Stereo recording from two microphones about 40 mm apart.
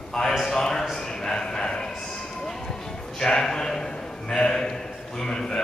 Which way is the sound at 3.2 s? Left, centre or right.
Centre.